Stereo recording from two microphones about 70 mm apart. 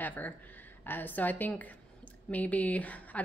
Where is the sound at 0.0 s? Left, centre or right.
Left.